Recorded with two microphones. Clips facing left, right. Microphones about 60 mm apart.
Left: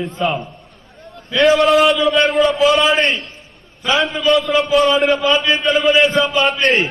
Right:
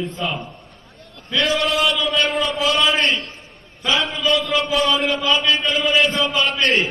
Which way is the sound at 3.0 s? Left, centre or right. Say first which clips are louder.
Left 3 dB; left.